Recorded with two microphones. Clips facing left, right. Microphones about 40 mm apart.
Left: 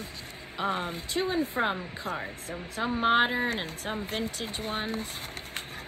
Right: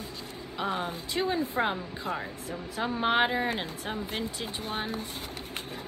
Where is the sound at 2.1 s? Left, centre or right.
Right.